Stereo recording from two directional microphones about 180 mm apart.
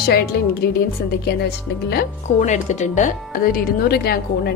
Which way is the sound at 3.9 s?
60° left (ahead or behind).